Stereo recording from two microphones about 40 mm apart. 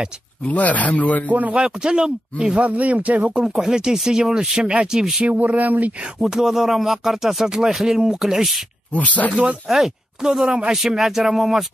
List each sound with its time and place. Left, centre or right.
0.5 s speech: left
1.5 s speech: right
2.6 s speech: right
3.4 s a sound: centre
4.2 s speech: right
5.2 s speech: right
6.2 s a sound: centre
8.9 s speech: left
9.7 s speech: centre
10.7 s a sound: centre